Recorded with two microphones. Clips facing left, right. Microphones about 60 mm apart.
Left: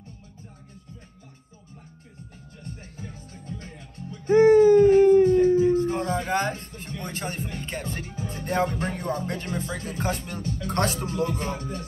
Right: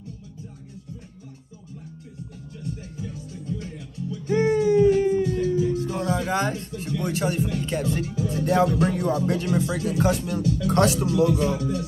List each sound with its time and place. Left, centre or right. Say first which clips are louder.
2.6 s music: right 6 dB; left